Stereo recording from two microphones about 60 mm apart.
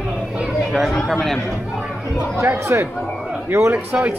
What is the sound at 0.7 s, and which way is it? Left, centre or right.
Speech, centre.